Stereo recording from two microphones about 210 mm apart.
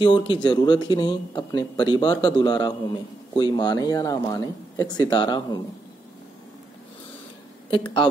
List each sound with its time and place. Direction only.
0.0 s speech: 25° left (ahead or behind)
7.7 s speech: 25° left (ahead or behind)